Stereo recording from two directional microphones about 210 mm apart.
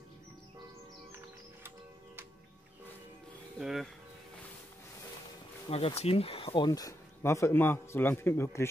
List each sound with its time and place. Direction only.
3.5 s speech: centre (ahead or behind)
5.7 s speech: 30° left (ahead or behind); by 8.6 s 10° left (ahead or behind)